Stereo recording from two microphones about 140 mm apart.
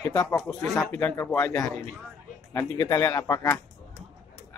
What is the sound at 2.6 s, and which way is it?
A man's voice, 20° left (ahead or behind).